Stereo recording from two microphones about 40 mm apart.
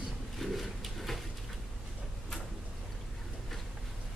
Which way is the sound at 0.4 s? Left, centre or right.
Centre.